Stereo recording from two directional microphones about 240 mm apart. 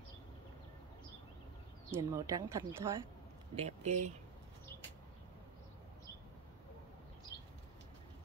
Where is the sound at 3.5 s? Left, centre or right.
Right.